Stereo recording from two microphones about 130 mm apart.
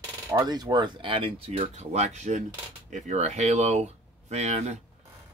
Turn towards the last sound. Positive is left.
turn(degrees=-55)  # may be behind; listen again after turning